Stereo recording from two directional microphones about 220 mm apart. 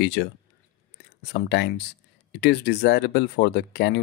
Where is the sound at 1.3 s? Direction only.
50° left (ahead or behind).